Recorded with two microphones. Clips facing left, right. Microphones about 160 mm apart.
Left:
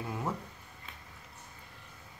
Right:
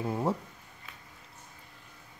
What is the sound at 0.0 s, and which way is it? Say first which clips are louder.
Speech: right 6 dB; 30° right (ahead or behind).